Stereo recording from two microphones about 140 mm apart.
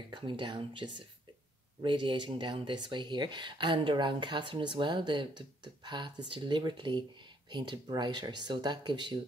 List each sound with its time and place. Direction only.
0.1 s speech: 35° right (ahead or behind)